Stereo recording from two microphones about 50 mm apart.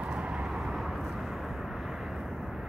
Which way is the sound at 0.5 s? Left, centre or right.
Centre.